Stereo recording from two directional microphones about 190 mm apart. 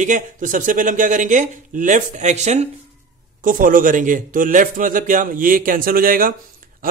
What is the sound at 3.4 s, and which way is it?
Speech, 45° right (ahead or behind).